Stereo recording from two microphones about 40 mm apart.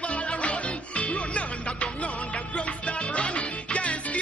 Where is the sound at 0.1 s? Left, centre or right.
Left.